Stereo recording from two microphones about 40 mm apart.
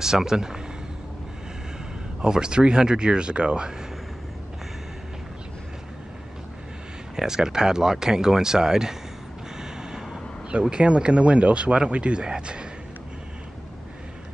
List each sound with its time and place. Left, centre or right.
0.0 s speech: centre
2.2 s speech: centre
7.2 s speech: centre
9.6 s gasp: centre
10.6 s speech: right